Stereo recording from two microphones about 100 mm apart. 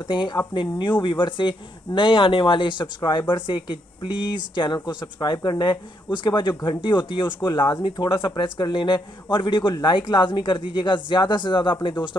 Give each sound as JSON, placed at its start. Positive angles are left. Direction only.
{"t": 0.1, "sound": "speech", "side_deg": 55}
{"t": 4.7, "sound": "speech", "side_deg": 45}